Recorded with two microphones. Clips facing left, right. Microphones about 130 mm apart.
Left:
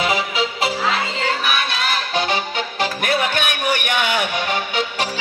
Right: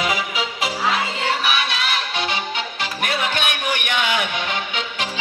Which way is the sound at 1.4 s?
45° left (ahead or behind).